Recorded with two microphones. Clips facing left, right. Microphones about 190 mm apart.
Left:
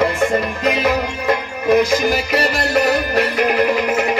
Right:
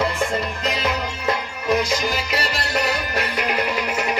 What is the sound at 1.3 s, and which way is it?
Music, 50° left (ahead or behind).